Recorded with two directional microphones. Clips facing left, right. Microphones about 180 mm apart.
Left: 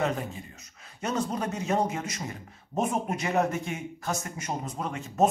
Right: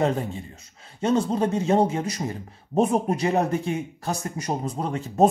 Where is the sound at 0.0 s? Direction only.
30° right (ahead or behind).